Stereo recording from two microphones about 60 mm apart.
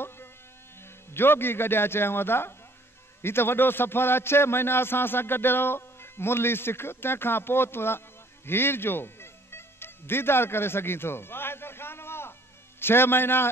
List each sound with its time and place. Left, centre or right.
1.1 s a man's voice: left